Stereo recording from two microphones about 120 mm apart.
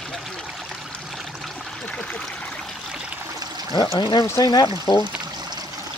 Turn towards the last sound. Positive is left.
turn(degrees=35)  # may be behind; listen again after turning